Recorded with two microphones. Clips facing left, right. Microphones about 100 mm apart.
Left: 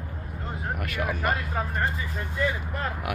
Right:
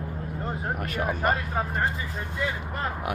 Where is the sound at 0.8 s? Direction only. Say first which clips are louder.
Even; 40° right (ahead or behind).